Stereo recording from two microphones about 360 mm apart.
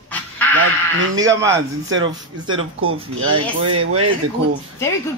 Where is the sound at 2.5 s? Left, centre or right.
Right.